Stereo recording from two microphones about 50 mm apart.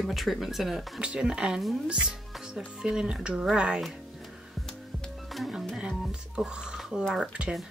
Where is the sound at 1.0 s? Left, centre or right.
Centre.